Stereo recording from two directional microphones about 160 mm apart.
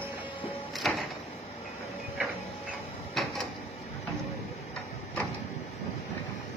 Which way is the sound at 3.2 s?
Centre (ahead or behind).